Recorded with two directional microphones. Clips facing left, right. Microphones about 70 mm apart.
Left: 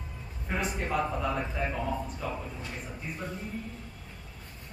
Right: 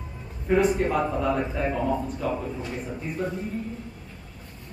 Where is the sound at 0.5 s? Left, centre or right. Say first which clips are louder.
Right 10 dB; centre.